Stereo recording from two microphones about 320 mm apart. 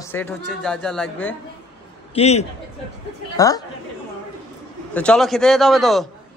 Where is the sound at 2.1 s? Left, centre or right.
Centre.